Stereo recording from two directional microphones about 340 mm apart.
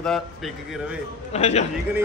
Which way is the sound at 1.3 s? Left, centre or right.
Centre.